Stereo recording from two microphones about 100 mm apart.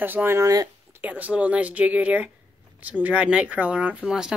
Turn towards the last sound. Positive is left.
turn(degrees=-5)  # may be behind; listen again after turning